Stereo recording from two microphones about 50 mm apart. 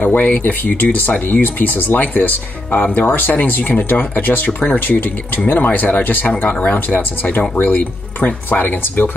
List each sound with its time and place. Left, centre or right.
0.0 s speech: left